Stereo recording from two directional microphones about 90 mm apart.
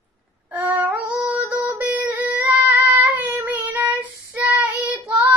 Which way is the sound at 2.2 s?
20° right (ahead or behind).